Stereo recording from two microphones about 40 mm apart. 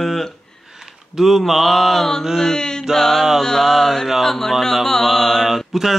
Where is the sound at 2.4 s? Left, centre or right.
Centre.